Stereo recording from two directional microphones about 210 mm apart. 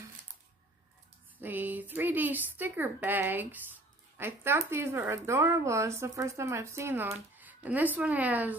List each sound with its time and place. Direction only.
1.4 s speech: 10° right (ahead or behind)